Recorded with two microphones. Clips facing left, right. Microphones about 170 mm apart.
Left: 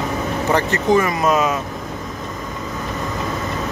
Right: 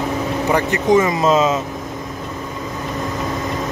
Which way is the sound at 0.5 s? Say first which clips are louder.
Right 1 dB; 15° right (ahead or behind).